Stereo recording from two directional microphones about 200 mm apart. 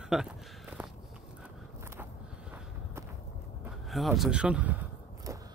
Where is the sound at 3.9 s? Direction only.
Centre (ahead or behind).